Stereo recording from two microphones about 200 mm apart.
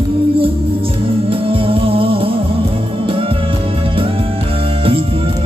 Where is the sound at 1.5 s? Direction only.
25° right (ahead or behind).